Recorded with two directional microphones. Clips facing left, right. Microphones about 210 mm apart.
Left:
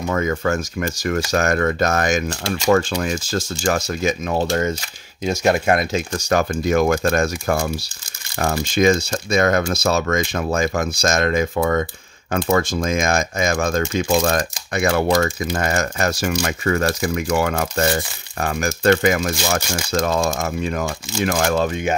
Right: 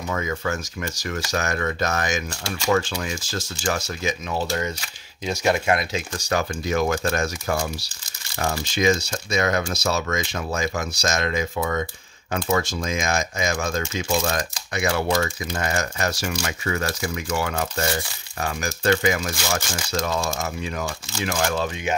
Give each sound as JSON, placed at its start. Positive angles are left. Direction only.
{"t": 0.1, "sound": "speech", "side_deg": 50}